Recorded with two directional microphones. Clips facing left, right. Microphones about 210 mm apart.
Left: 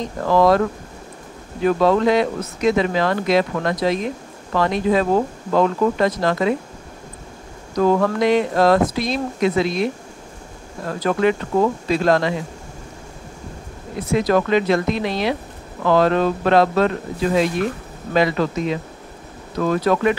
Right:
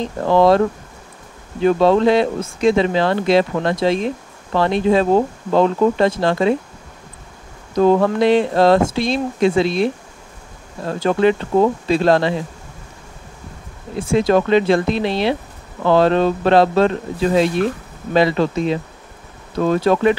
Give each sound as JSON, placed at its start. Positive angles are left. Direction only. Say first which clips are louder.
{"t": 0.0, "sound": "speech", "louder": "right 2 dB", "side_deg": -25}
{"t": 7.7, "sound": "speech", "louder": "right 3 dB", "side_deg": -25}
{"t": 10.9, "sound": "speech", "louder": "right 3 dB", "side_deg": -25}
{"t": 13.9, "sound": "speech", "louder": "right 3 dB", "side_deg": -30}